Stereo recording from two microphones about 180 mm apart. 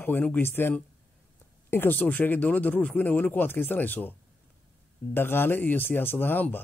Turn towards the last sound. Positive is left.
turn(degrees=10)  # may be behind; listen again after turning